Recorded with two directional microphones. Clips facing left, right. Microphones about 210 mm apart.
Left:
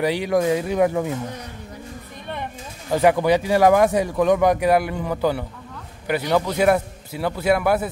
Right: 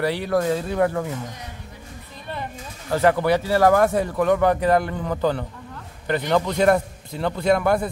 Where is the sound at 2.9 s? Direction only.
15° left (ahead or behind).